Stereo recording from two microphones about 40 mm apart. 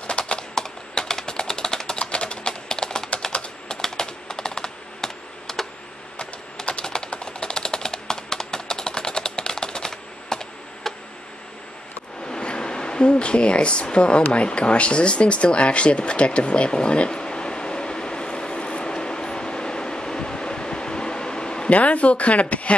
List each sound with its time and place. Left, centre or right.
0.2 s typing: left
0.6 s typing: centre
6.1 s typing: left
12.3 s a sound: left
21.6 s a woman's voice: left